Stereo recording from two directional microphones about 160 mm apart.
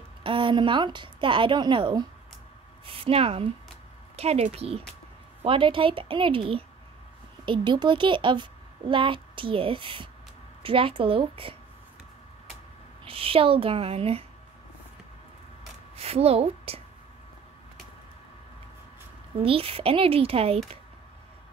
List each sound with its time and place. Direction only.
0.2 s a child's voice: 30° right (ahead or behind)
13.0 s a child's voice: 35° right (ahead or behind)
16.0 s a child's voice: 40° right (ahead or behind)
19.4 s a child's voice: 35° right (ahead or behind)